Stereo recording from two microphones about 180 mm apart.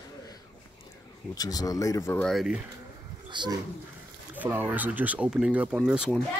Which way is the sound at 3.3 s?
25° right (ahead or behind).